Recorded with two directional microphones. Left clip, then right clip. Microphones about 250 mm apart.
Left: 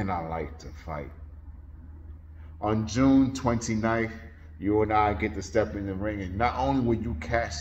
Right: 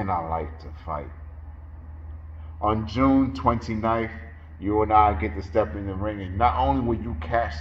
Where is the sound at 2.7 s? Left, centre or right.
Left.